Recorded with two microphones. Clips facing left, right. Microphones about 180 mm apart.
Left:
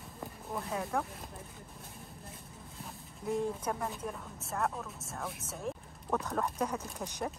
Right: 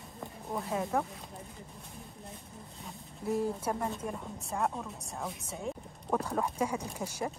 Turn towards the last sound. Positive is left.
turn(degrees=-10)  # may be behind; listen again after turning